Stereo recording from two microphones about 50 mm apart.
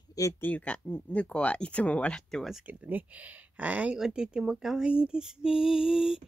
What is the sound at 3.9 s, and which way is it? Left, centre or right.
Female singing, centre.